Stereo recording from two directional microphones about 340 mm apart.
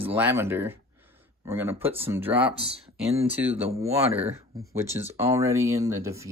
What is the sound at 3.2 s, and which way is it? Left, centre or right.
Speech, centre.